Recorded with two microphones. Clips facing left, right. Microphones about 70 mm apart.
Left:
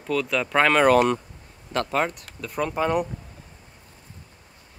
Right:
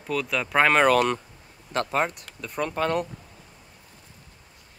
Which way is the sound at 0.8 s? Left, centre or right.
Left.